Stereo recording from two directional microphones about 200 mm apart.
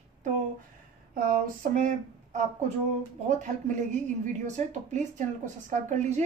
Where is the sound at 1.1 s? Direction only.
40° right (ahead or behind).